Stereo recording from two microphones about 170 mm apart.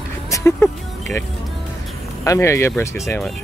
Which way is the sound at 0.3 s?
15° left (ahead or behind).